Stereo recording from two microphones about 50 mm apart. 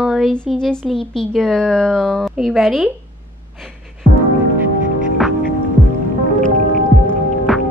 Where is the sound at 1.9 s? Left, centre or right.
Centre.